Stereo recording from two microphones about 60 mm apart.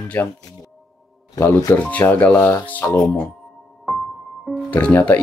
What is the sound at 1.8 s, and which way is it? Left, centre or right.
Speech, left.